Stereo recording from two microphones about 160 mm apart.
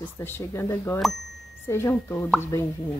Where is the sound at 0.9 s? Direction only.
Centre (ahead or behind).